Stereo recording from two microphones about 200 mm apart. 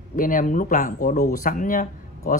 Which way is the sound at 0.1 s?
40° left (ahead or behind).